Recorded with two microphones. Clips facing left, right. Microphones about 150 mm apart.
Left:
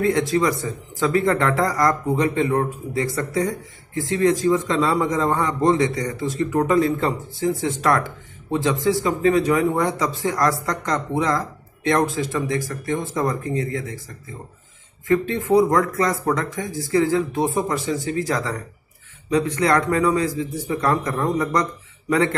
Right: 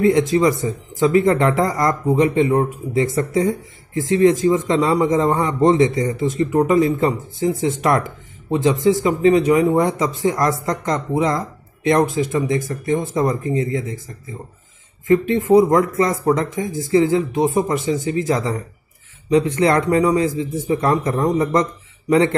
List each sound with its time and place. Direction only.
0.0 s speech: 20° right (ahead or behind)
15.0 s speech: 25° right (ahead or behind)